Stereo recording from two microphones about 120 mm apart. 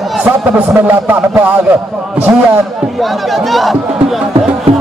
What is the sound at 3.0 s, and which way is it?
Speech, centre (ahead or behind).